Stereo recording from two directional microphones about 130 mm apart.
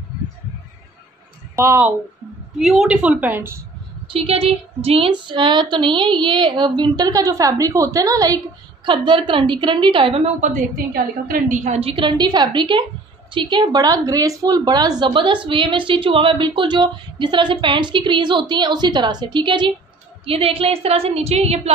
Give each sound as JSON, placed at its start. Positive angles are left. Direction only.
{"t": 1.6, "sound": "speech", "side_deg": -15}
{"t": 2.6, "sound": "speech", "side_deg": 0}
{"t": 4.1, "sound": "speech", "side_deg": -45}
{"t": 8.8, "sound": "a woman's voice", "side_deg": -40}
{"t": 11.2, "sound": "a woman's voice", "side_deg": -80}
{"t": 12.0, "sound": "speech", "side_deg": -35}
{"t": 20.2, "sound": "a woman's voice", "side_deg": -45}